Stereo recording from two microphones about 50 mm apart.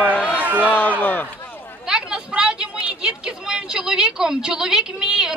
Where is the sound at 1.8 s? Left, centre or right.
Centre.